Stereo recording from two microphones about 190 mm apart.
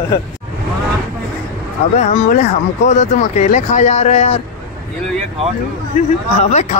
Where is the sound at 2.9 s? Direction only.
40° left (ahead or behind).